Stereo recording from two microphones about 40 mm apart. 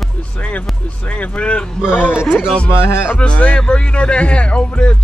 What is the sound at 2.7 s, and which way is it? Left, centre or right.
Speech, left.